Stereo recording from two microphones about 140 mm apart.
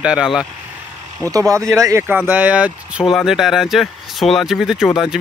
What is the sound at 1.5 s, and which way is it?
Speech, 20° right (ahead or behind).